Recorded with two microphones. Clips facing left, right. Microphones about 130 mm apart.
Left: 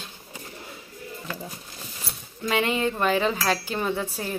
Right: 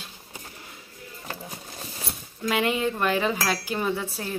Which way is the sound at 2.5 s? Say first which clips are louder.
Even; 5° right (ahead or behind).